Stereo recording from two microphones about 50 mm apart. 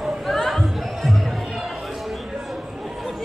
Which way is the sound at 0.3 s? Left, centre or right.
Centre.